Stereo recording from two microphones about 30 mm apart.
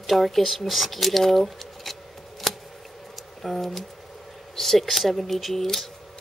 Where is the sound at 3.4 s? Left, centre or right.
Centre.